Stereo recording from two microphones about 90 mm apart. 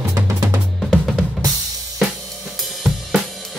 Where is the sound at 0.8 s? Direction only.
Centre (ahead or behind).